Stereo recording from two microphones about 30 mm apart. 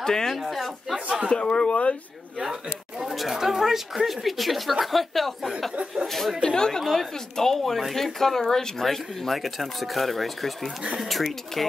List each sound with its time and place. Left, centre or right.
0.0 s speech: centre
0.4 s speech: centre
1.3 s speech: left
2.3 s a sound: centre
3.3 s speech: centre
6.4 s speech: left
6.9 s speech: centre